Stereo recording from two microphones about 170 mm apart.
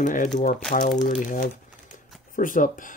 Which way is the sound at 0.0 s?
50° left (ahead or behind).